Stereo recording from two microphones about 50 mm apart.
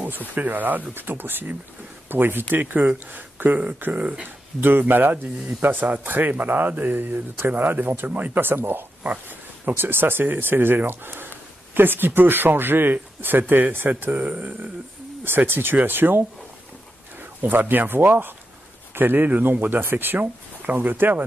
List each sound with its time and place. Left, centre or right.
0.3 s speech: right
3.9 s speech: right
4.6 s speech: right
9.0 s speech: right
15.2 s speech: right